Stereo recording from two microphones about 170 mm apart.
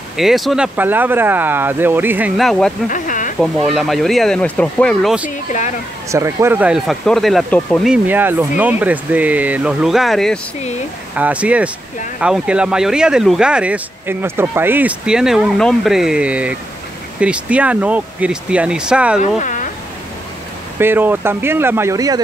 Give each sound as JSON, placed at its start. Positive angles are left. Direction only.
{"t": 0.2, "sound": "speech", "side_deg": 0}
{"t": 2.4, "sound": "speech", "side_deg": 0}
{"t": 2.9, "sound": "a sound", "side_deg": 50}
{"t": 3.3, "sound": "speech", "side_deg": 0}
{"t": 6.1, "sound": "speech", "side_deg": -15}
{"t": 7.9, "sound": "speech", "side_deg": -10}
{"t": 11.1, "sound": "speech", "side_deg": -10}
{"t": 19.4, "sound": "a sound", "side_deg": 50}
{"t": 20.8, "sound": "speech", "side_deg": -10}